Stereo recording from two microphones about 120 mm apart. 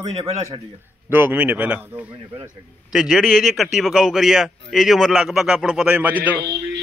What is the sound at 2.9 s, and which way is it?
A man's voice, centre (ahead or behind).